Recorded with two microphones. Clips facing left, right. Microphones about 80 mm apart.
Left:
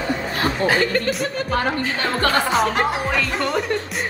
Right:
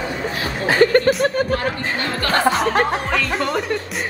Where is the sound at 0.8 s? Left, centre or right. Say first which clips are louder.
Right 7 dB; right.